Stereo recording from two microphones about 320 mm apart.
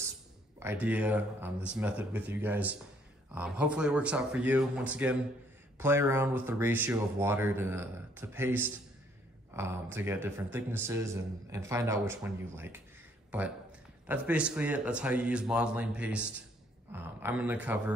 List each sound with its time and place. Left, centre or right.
0.6 s speech: centre